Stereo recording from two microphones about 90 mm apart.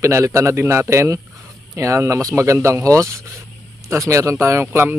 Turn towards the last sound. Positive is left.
turn(degrees=-30)  # may be behind; listen again after turning